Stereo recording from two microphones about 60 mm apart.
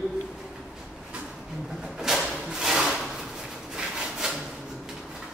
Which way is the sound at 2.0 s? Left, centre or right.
Centre.